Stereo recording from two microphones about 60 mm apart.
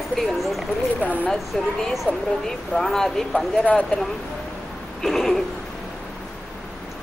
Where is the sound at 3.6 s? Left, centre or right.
Left.